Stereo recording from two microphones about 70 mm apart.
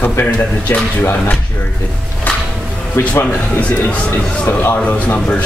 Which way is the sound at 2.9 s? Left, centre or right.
Left.